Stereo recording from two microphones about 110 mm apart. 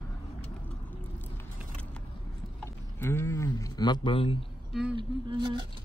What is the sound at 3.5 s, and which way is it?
Speech, 35° left (ahead or behind).